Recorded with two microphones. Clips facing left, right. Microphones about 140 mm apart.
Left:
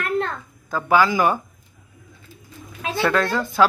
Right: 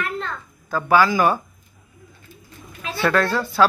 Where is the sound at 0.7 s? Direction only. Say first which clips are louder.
Right 1 dB; 15° left (ahead or behind).